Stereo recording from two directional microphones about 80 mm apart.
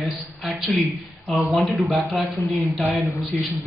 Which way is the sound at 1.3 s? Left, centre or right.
Centre.